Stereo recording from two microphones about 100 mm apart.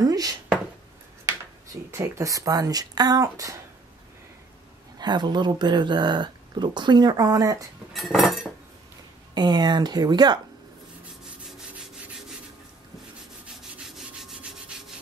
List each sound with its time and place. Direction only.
0.0 s a sound: 40° right (ahead or behind)
1.2 s speech: 30° right (ahead or behind)
4.9 s speech: 45° right (ahead or behind)
7.9 s cutlery: centre (ahead or behind)
9.3 s speech: 45° right (ahead or behind)
13.6 s rub: 5° right (ahead or behind)